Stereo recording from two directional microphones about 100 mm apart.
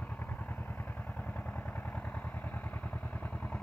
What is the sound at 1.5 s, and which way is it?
Vehicle, 15° left (ahead or behind).